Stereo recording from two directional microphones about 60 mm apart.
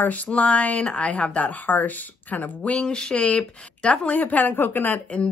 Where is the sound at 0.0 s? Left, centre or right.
Left.